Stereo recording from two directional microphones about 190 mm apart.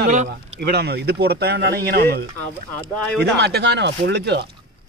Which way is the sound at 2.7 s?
5° left (ahead or behind).